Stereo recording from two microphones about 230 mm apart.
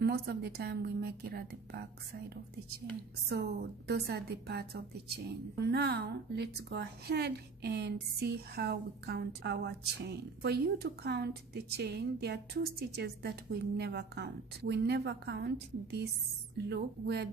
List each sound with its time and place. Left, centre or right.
0.0 s a woman's voice: right